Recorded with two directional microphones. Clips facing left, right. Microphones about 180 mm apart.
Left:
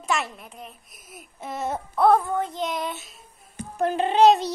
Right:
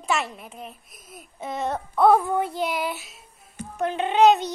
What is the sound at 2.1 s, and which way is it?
Child singing, 10° right (ahead or behind).